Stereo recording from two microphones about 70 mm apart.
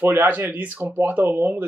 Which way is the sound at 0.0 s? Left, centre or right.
Right.